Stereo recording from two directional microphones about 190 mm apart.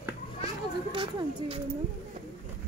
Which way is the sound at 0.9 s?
25° right (ahead or behind).